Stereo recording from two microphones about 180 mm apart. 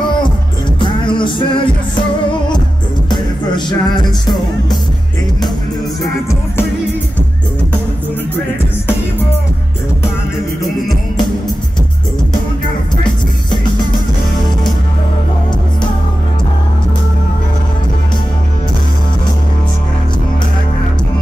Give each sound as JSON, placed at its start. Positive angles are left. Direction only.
{"t": 0.7, "sound": "music", "side_deg": 25}
{"t": 3.1, "sound": "music", "side_deg": 25}
{"t": 12.9, "sound": "music", "side_deg": 25}